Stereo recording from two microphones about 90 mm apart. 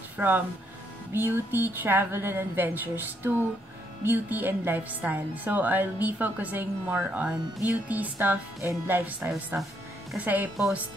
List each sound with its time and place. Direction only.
0.2 s a woman's voice: 20° right (ahead or behind)
7.1 s a woman's voice: 10° right (ahead or behind)